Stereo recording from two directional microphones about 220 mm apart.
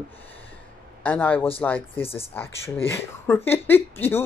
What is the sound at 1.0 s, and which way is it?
Speech, 5° left (ahead or behind).